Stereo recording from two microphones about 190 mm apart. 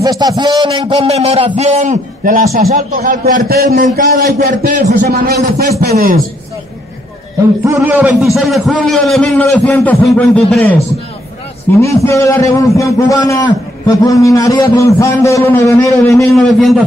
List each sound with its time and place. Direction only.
0.0 s a man's voice: 20° right (ahead or behind); by 5.1 s 40° right (ahead or behind)
5.1 s speech: 50° right (ahead or behind)
7.6 s a man's voice: 10° right (ahead or behind); by 10.8 s 5° left (ahead or behind)
11.8 s a man's voice: 15° left (ahead or behind)